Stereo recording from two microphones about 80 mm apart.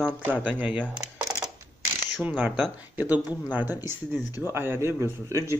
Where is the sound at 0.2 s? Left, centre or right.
Right.